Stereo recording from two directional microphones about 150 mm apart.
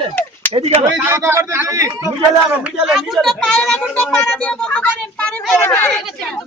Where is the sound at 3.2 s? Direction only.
5° left (ahead or behind).